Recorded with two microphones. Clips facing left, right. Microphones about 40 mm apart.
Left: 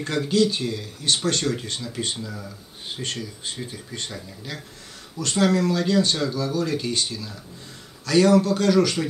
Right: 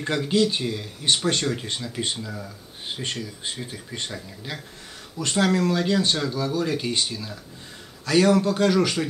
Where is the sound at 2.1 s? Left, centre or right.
Centre.